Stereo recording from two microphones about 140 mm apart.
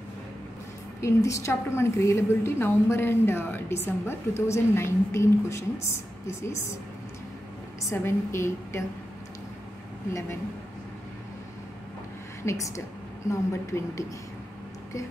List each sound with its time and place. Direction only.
1.0 s a woman's voice: 20° left (ahead or behind)
7.9 s a woman's voice: 20° left (ahead or behind)
12.4 s a woman's voice: 20° left (ahead or behind)